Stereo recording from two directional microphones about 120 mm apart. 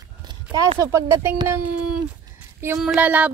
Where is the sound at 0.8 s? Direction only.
25° right (ahead or behind).